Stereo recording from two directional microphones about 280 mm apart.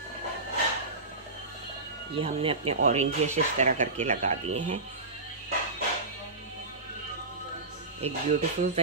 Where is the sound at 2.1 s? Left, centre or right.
Centre.